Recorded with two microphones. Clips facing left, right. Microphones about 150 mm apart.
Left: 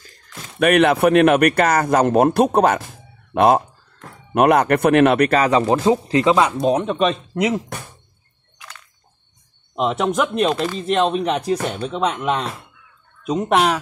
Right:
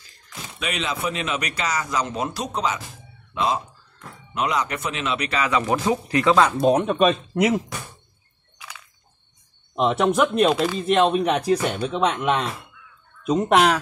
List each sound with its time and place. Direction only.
0.0 s speech: 55° left (ahead or behind); by 6.5 s 20° left (ahead or behind)
6.6 s speech: 5° right (ahead or behind)
8.5 s a sound: 10° right (ahead or behind)
9.8 s speech: 5° left (ahead or behind)